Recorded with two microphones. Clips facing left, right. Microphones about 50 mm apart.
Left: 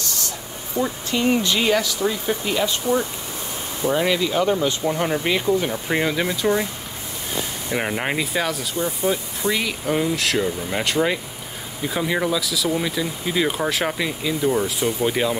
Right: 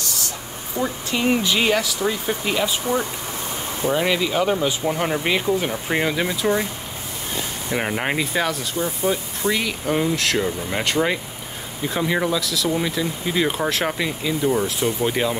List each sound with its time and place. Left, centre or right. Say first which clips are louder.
0.8 s speech: left 1 dB; right
1.7 s speech: even; centre
7.7 s speech: even; centre